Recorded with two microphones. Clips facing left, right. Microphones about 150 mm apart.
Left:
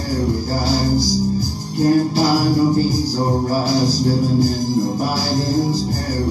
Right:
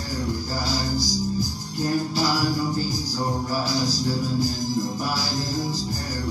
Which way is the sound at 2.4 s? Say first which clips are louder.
Left 9 dB; 30° left (ahead or behind).